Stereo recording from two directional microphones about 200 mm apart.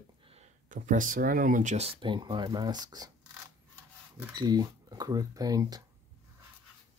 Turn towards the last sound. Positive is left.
turn(degrees=-20)  # may be behind; listen again after turning